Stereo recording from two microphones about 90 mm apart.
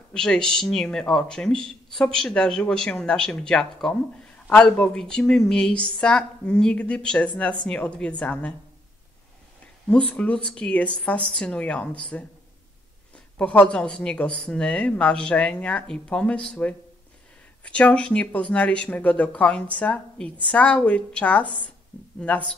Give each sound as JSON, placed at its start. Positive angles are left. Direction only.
{"t": 0.1, "sound": "speech", "side_deg": 5}
{"t": 9.8, "sound": "speech", "side_deg": 10}